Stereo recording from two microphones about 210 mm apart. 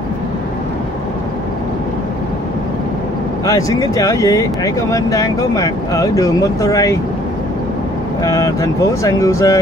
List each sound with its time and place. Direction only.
3.4 s speech: 15° left (ahead or behind)
8.2 s speech: 15° left (ahead or behind)